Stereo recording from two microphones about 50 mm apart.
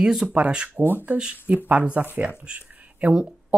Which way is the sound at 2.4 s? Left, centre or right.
Right.